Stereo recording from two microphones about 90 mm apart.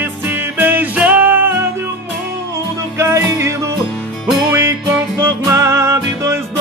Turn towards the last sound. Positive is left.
turn(degrees=-30)  # may be behind; listen again after turning